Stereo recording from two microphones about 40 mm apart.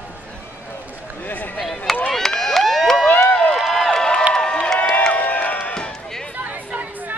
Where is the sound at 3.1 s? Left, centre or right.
Left.